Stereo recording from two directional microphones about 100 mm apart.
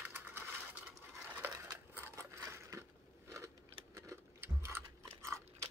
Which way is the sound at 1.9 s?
25° right (ahead or behind).